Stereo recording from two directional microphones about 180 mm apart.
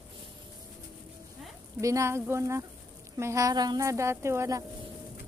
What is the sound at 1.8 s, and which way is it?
A woman's voice, 15° right (ahead or behind).